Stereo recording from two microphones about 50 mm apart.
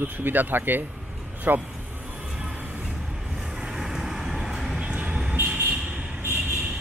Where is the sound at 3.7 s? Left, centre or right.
Centre.